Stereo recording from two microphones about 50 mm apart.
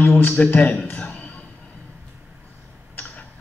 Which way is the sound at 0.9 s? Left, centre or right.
Left.